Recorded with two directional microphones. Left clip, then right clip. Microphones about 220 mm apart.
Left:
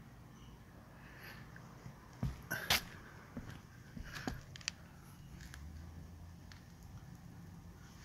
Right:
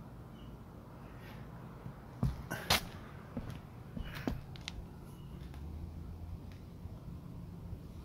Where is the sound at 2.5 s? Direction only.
5° left (ahead or behind).